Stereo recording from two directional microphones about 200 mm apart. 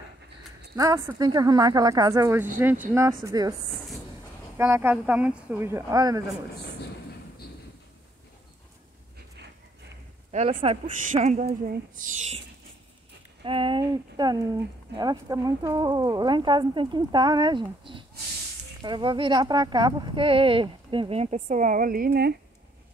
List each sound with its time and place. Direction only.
0.7 s speech: 15° right (ahead or behind)
4.6 s speech: 10° right (ahead or behind)
10.3 s speech: 30° right (ahead or behind)
13.4 s speech: 25° right (ahead or behind); by 22.3 s 50° right (ahead or behind)